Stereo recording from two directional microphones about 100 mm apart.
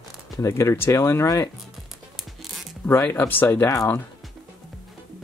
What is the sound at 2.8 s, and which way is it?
Speech, 20° left (ahead or behind).